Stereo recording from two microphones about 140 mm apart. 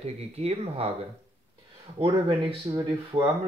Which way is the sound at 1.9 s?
40° right (ahead or behind).